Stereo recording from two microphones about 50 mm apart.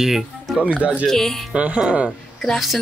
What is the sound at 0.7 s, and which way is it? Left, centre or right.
Speech, right.